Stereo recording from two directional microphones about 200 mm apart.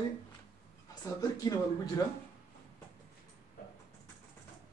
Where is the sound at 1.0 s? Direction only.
15° left (ahead or behind).